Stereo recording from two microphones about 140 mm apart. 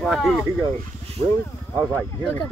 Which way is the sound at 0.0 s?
Centre (ahead or behind).